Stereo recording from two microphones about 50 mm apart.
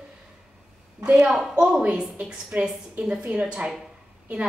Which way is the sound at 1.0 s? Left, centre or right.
Right.